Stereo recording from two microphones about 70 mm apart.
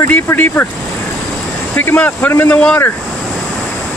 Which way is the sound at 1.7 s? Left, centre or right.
Left.